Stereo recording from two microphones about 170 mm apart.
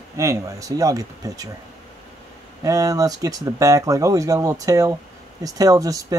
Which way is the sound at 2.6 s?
20° right (ahead or behind).